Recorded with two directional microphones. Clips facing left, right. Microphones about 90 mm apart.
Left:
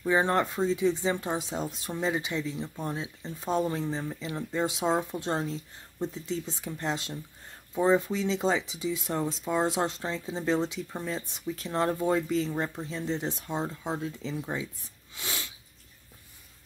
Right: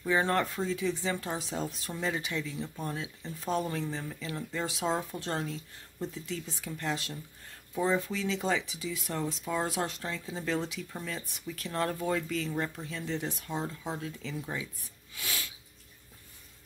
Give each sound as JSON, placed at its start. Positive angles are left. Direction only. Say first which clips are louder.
{"t": 0.0, "sound": "speech", "louder": "left 3 dB", "side_deg": 20}